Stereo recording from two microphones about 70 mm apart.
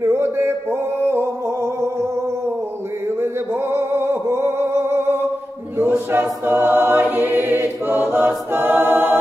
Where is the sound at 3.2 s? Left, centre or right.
Right.